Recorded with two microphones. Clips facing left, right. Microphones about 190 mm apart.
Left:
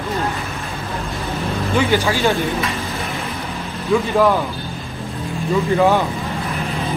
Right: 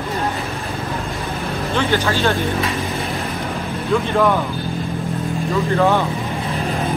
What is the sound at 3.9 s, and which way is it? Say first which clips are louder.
Speech: left 2 dB; centre (ahead or behind).